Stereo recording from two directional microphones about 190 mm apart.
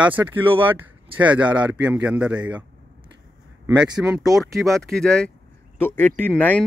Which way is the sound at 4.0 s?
5° right (ahead or behind).